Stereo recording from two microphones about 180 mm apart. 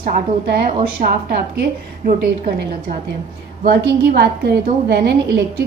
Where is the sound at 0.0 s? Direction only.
55° right (ahead or behind).